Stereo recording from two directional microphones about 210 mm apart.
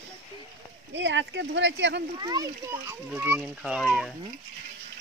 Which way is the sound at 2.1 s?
20° right (ahead or behind).